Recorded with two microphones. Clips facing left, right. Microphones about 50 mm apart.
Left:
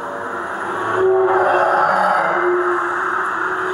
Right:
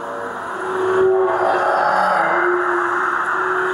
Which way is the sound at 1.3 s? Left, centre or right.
Left.